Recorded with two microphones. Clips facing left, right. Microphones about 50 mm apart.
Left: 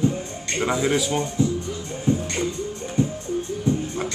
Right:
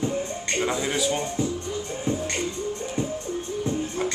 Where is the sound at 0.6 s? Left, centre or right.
Centre.